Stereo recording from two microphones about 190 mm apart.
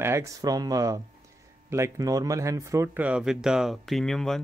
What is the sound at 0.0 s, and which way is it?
Speech, 15° right (ahead or behind).